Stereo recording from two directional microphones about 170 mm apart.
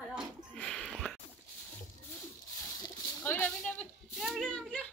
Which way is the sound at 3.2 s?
10° left (ahead or behind).